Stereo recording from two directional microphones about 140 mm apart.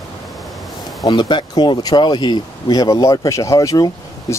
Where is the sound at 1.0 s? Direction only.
30° left (ahead or behind).